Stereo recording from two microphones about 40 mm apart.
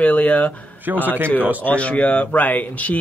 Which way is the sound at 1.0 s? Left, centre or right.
Right.